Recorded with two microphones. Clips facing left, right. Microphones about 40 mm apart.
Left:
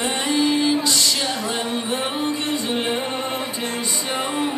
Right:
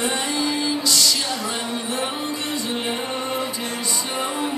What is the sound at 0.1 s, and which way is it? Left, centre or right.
Music, left.